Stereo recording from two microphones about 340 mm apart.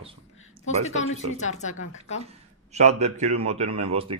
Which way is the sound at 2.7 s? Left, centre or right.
Centre.